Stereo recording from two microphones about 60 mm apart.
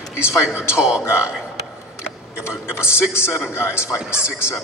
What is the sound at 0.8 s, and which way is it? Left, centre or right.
Speech, centre.